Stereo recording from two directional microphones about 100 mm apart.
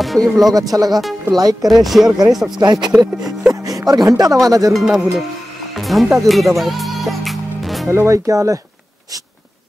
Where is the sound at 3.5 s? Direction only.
40° right (ahead or behind).